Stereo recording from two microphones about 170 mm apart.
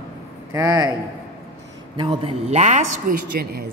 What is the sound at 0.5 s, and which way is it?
Speech, 20° right (ahead or behind).